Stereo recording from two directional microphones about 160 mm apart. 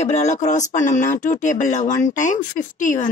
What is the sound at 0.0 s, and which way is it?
Speech, 45° left (ahead or behind).